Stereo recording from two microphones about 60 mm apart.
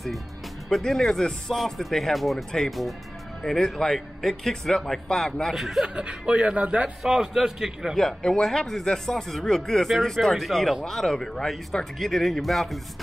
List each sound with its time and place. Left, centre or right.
0.7 s speech: centre
5.9 s speech: centre
7.0 s a man's voice: centre
7.9 s speech: centre